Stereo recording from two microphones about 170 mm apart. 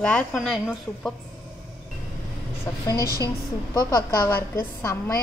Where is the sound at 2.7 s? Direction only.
20° left (ahead or behind).